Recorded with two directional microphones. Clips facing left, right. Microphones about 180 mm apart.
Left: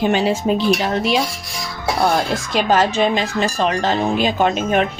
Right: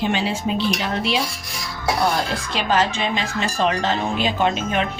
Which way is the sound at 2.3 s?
45° left (ahead or behind).